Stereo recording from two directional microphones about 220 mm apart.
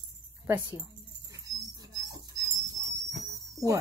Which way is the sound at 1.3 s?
15° right (ahead or behind).